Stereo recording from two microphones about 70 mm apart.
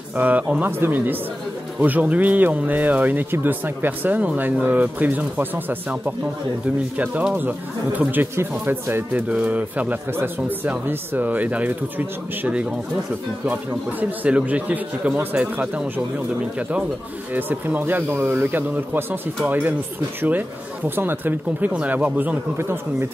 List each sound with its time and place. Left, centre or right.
0.1 s speech: right
0.7 s speech: right
8.0 s speech: right
9.1 s speech: centre
10.1 s speech: right
15.6 s speech: centre
17.3 s speech: right
22.6 s speech: right